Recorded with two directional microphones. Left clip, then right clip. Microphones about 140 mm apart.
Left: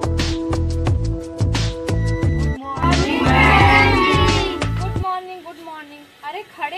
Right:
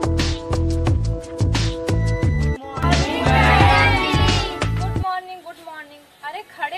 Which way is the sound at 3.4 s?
25° right (ahead or behind).